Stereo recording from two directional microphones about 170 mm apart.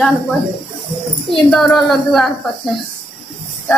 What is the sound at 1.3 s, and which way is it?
A man's voice, centre (ahead or behind).